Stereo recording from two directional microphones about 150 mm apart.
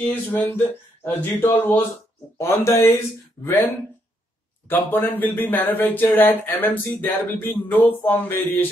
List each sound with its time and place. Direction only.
0.0 s speech: 15° left (ahead or behind)
4.6 s speech: 10° left (ahead or behind)